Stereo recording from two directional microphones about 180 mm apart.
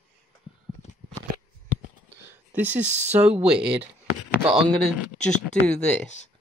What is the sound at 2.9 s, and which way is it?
Speech, 40° right (ahead or behind).